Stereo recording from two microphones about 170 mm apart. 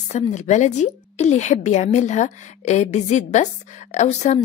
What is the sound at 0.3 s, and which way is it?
A woman's voice, 45° left (ahead or behind).